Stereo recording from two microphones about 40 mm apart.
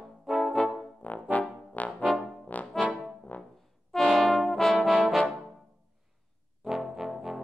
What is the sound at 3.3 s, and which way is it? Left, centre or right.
Brass instrument, left.